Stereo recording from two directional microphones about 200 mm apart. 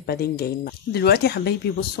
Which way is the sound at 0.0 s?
50° left (ahead or behind).